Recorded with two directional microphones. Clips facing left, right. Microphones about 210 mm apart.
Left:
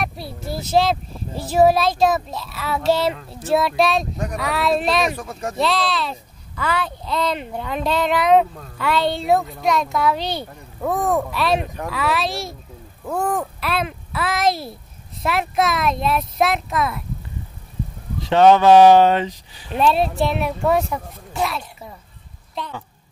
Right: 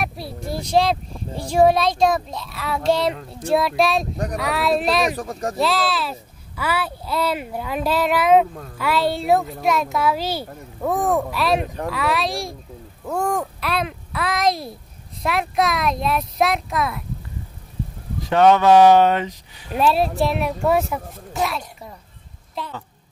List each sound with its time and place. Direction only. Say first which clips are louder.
0.0 s a child's voice: even; centre (ahead or behind)
5.1 s speech: right 2 dB; 35° right (ahead or behind)
5.6 s a child's voice: left 1 dB; centre (ahead or behind)
18.3 s speech: left 2 dB; 30° left (ahead or behind)
19.7 s a child's voice: left 1 dB; 5° right (ahead or behind)